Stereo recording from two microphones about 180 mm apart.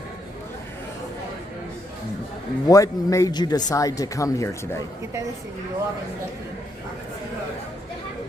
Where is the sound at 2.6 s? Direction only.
20° left (ahead or behind).